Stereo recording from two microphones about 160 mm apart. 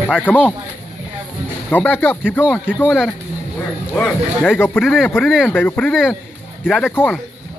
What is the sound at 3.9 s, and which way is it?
Speech, 5° left (ahead or behind).